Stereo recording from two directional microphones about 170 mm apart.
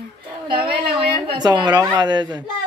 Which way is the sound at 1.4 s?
25° right (ahead or behind).